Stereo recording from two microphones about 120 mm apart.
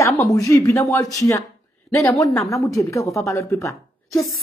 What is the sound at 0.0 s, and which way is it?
A woman's voice, 25° left (ahead or behind).